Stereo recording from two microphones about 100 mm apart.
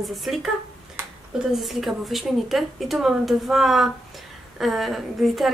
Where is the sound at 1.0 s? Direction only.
25° right (ahead or behind).